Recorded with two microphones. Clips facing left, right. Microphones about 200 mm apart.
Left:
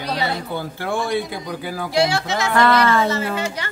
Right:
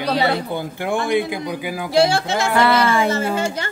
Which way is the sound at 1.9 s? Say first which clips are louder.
Right 3 dB; 30° right (ahead or behind).